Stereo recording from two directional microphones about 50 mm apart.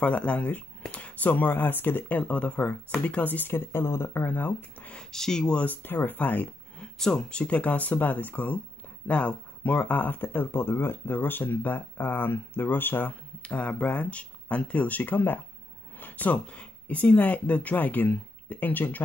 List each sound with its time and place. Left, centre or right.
0.0 s speech: left
4.3 s speech: left
5.1 s speech: centre
5.7 s speech: left
7.0 s speech: centre; by 13.1 s left
13.4 s speech: left